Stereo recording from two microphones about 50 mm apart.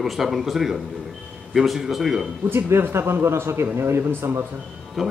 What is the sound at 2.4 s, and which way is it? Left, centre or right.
A man's voice, right.